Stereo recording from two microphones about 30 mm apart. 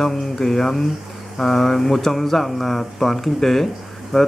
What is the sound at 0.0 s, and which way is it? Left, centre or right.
Speech, centre.